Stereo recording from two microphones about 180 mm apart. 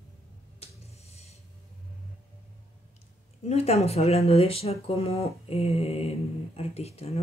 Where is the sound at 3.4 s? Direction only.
35° left (ahead or behind).